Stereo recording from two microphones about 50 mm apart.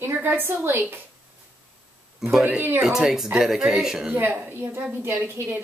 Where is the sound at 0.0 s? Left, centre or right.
Right.